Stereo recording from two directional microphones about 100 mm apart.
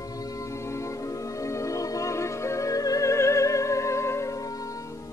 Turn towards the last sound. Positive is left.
turn(degrees=35)  # may be behind; listen again after turning